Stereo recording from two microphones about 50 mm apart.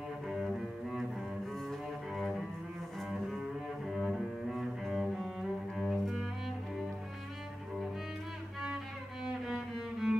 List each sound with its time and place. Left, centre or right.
1.7 s cello: centre
8.7 s music: centre